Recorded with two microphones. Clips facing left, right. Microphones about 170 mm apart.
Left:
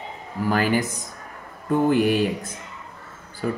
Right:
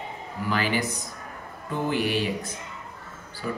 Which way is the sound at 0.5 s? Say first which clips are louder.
Left 5 dB; 45° left (ahead or behind).